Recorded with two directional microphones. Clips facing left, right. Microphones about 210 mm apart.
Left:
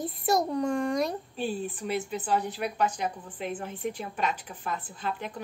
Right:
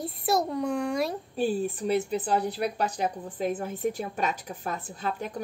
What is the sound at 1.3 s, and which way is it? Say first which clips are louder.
A woman's voice: right 5 dB; 40° right (ahead or behind).